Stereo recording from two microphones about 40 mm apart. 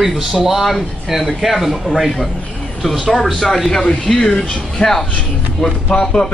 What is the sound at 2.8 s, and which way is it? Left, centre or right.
Speech, centre.